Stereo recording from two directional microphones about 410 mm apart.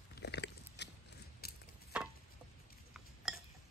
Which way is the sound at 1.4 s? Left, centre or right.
Left.